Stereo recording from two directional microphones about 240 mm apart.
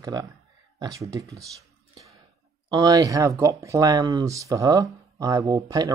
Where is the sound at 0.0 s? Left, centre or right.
Centre.